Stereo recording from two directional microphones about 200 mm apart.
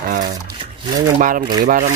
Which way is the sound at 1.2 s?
45° right (ahead or behind).